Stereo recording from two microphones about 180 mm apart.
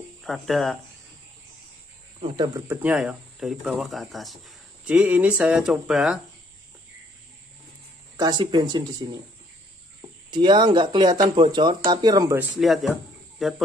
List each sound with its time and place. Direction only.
0.2 s speech: centre (ahead or behind)
2.2 s speech: 25° right (ahead or behind)
2.8 s speech: 5° right (ahead or behind)
8.2 s speech: 20° right (ahead or behind)
10.3 s speech: 25° right (ahead or behind)
12.4 s speech: centre (ahead or behind)